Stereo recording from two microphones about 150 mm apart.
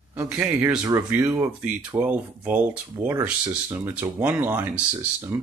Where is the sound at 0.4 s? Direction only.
10° right (ahead or behind).